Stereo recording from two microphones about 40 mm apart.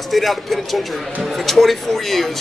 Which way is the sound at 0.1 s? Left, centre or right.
Centre.